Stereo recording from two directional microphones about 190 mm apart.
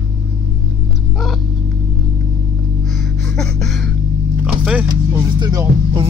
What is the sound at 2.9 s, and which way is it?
Gasp, 5° left (ahead or behind).